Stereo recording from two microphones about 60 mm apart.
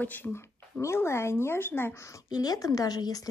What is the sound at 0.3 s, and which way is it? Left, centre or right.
Speech, left.